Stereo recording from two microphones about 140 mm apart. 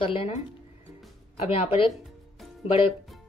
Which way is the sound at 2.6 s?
40° left (ahead or behind).